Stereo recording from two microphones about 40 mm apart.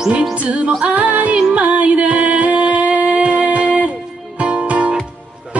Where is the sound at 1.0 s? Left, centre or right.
Right.